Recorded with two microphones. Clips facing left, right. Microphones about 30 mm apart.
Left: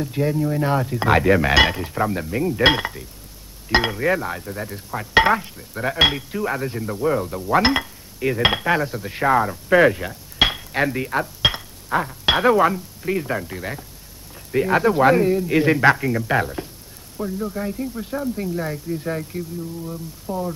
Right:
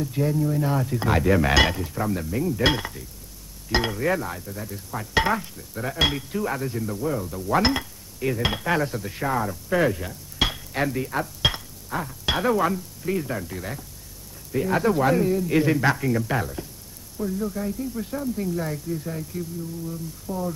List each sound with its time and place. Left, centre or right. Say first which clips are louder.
0.0 s speech: left 2 dB; left
6.1 s speech: left 3 dB; centre; by 7.4 s left
7.6 s a sound: left 4 dB; left
8.4 s cutlery: left 7 dB; left
8.6 s cutlery: left 3 dB; centre
9.1 s a sound: left 11 dB; left
12.1 s speech: left 5 dB; left
16.1 s cutlery: left 2 dB; centre
16.3 s speech: left 6 dB; left
17.2 s cutlery: left 1 dB; centre
17.6 s speech: left 2 dB; left